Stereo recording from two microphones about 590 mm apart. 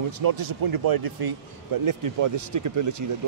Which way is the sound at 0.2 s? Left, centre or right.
Right.